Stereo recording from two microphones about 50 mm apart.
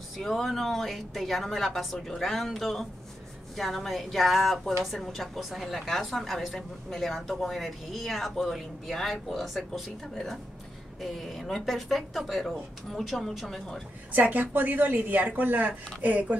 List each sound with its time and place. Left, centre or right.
0.2 s a woman's voice: centre
14.1 s a woman's voice: right